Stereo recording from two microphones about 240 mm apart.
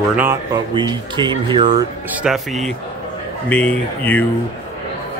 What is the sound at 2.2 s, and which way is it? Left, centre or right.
A man's voice, centre.